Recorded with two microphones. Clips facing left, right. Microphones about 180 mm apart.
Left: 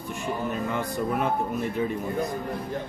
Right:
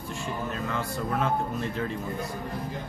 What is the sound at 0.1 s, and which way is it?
Speech, 15° left (ahead or behind).